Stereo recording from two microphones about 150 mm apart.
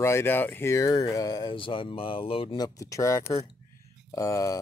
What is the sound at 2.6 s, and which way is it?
Speech, 20° left (ahead or behind).